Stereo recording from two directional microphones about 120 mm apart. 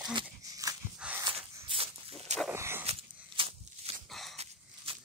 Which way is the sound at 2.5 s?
20° right (ahead or behind).